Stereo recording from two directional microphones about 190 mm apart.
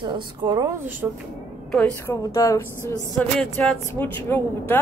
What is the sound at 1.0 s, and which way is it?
Speech, 10° right (ahead or behind).